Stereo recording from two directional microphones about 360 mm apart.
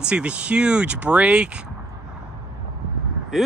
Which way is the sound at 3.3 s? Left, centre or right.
Centre.